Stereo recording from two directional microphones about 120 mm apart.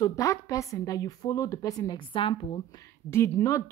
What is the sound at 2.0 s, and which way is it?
Speech, 45° left (ahead or behind).